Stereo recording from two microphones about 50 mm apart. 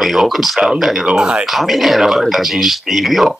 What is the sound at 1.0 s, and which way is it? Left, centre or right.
Speech, centre.